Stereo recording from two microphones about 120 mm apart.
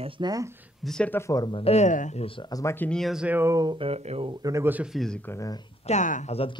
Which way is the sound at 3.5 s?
35° right (ahead or behind).